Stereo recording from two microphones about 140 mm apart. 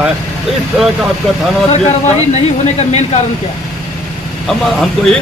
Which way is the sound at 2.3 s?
50° left (ahead or behind).